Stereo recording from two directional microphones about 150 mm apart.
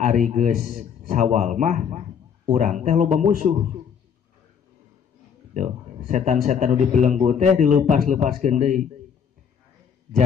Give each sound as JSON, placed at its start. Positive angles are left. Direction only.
{"t": 0.0, "sound": "a man's voice", "side_deg": -55}
{"t": 5.5, "sound": "a man's voice", "side_deg": -50}